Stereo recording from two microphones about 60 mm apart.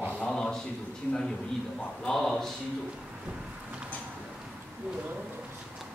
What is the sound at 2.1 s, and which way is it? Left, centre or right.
Speech, centre.